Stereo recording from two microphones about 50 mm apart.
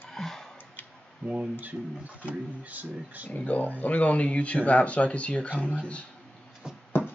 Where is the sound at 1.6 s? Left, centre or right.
Right.